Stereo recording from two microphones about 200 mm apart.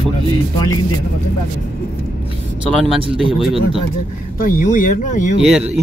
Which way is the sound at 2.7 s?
Centre (ahead or behind).